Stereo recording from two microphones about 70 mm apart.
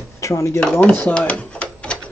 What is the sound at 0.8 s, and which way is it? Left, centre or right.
Speech, left.